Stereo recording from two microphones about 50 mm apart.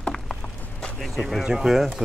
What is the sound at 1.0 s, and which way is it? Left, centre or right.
Speech, centre.